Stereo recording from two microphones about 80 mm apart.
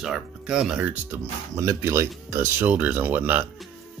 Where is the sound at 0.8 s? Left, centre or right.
Right.